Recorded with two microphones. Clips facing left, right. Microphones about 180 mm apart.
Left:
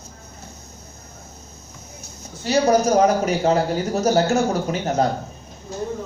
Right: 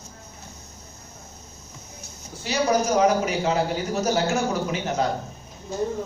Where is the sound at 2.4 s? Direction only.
45° left (ahead or behind).